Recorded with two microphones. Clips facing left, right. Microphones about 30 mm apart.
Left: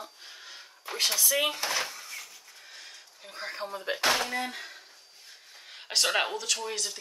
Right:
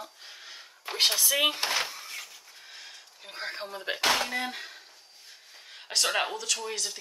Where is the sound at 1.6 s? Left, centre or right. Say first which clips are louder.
Right 2 dB; right.